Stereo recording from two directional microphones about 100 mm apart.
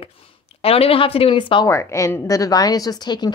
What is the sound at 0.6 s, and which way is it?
A woman's voice, 75° left (ahead or behind).